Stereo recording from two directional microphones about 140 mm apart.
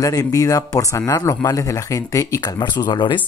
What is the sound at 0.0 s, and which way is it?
Speech, 25° left (ahead or behind).